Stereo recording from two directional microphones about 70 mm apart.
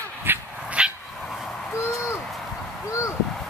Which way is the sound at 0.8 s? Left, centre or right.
Centre.